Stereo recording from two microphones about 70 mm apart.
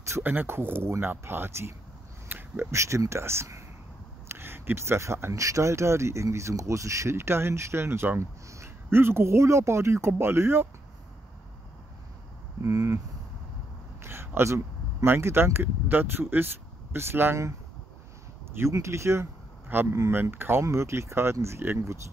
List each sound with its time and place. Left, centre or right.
0.2 s speech: right
2.2 s a sound: right
2.7 s speech: right
12.6 s speech: right
14.0 s a sound: right
15.0 s speech: right
18.6 s speech: right